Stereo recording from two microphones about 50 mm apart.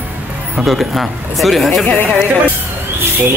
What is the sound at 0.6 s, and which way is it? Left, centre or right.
Speech, centre.